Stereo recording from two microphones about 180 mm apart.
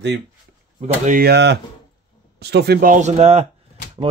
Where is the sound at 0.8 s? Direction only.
40° right (ahead or behind).